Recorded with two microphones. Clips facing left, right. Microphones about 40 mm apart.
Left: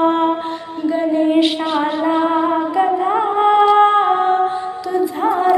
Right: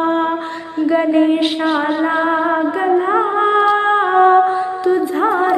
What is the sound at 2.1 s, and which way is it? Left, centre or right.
Music, centre.